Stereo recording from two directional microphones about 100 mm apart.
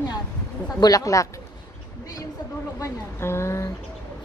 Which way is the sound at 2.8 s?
25° left (ahead or behind).